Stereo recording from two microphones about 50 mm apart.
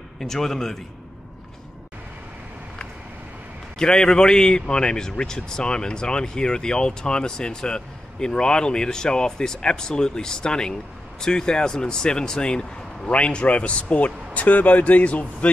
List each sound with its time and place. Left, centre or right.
0.2 s a man's voice: centre
3.7 s a man's voice: centre